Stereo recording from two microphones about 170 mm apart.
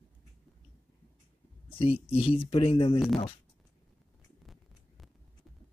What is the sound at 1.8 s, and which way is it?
Speech, 35° left (ahead or behind).